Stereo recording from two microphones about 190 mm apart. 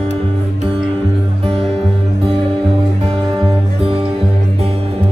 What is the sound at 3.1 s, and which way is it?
Music, 30° right (ahead or behind).